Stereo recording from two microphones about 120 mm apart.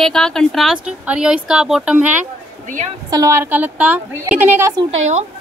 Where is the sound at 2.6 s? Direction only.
90° right.